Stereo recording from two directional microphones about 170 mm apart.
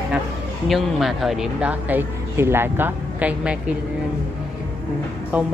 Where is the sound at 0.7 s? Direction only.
Centre (ahead or behind).